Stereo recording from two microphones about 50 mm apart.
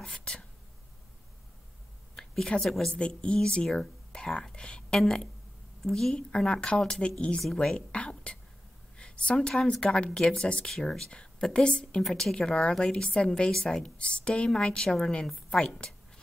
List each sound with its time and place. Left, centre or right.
0.0 s speech: centre
2.1 s a sound: centre
2.6 s speech: centre
2.9 s a woman's voice: centre
7.6 s whispering: centre
8.9 s a woman's voice: centre
12.0 s a woman's voice: centre
12.4 s speech: centre
13.8 s a woman's voice: left